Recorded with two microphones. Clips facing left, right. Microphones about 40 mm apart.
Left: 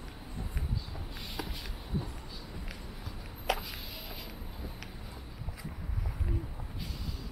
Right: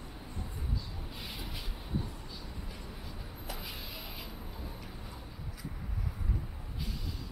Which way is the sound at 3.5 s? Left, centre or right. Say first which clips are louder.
Left 12 dB; left.